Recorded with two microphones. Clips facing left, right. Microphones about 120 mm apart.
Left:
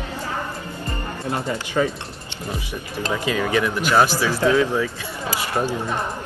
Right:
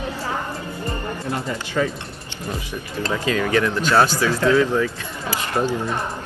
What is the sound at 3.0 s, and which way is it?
Speech, 15° left (ahead or behind).